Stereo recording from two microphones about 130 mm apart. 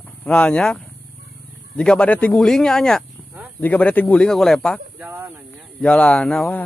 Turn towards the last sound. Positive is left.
turn(degrees=10)  # may be behind; listen again after turning